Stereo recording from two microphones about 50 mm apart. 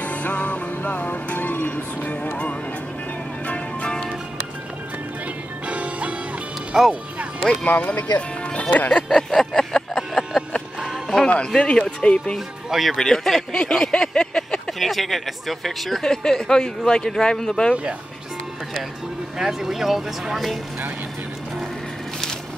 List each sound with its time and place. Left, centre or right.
0.0 s music: left
3.4 s music: left
5.7 s music: right
6.7 s speech: centre
7.6 s speech: left
9.1 s a sound: centre
11.2 s speech: left
12.4 s speech: centre
12.9 s speech: centre
14.7 s speech: centre
19.3 s speech: centre